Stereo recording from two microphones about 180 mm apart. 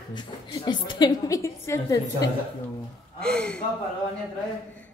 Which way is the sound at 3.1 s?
5° left (ahead or behind).